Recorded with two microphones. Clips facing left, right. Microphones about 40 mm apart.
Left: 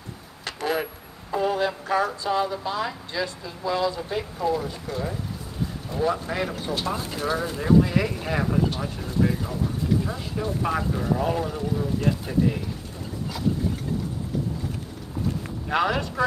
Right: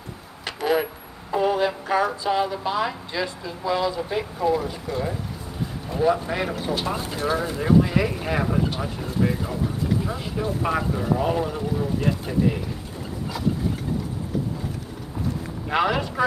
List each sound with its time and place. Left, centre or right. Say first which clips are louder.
0.5 s a sound: right 4 dB; right
2.6 s speech: right 3 dB; right
15.7 s speech: right 1 dB; centre